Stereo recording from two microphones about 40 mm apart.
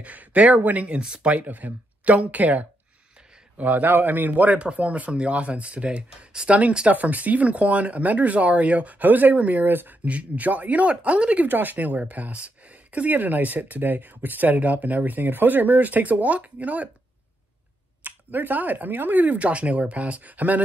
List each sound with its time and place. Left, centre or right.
0.0 s a man's voice: right
4.0 s speech: right
6.9 s speech: right
10.0 s speech: right
10.9 s speech: right
11.5 s speech: right
18.0 s speech: right
19.3 s speech: right